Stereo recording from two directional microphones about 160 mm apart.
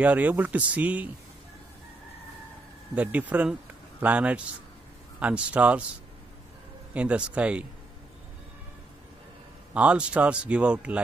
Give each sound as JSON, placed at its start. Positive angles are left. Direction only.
{"t": 0.0, "sound": "speech", "side_deg": -10}
{"t": 2.9, "sound": "speech", "side_deg": -10}
{"t": 6.9, "sound": "speech", "side_deg": -5}
{"t": 9.8, "sound": "speech", "side_deg": -5}